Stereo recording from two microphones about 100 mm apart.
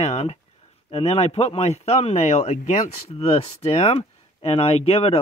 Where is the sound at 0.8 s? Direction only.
75° left (ahead or behind).